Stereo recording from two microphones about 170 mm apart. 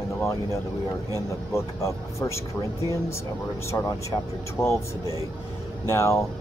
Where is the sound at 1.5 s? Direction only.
15° left (ahead or behind).